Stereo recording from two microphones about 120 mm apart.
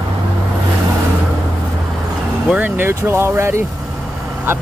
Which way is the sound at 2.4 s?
10° right (ahead or behind).